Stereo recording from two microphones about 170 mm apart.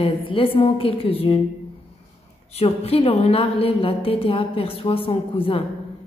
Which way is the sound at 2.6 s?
35° left (ahead or behind).